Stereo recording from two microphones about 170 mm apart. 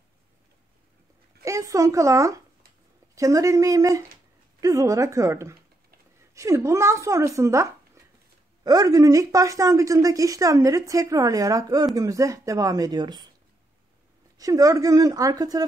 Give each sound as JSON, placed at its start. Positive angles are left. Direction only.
{"t": 1.4, "sound": "a woman's voice", "side_deg": -20}
{"t": 14.4, "sound": "a woman's voice", "side_deg": -20}